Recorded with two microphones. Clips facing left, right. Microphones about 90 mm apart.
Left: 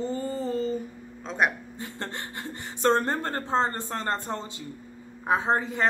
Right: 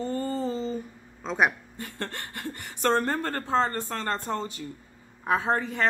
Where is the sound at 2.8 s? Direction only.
25° left (ahead or behind).